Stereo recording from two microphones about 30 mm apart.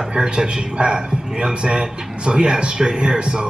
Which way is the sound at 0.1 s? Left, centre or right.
Right.